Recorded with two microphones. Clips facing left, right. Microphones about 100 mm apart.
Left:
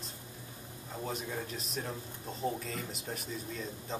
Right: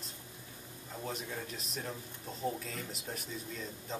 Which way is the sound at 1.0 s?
5° left (ahead or behind).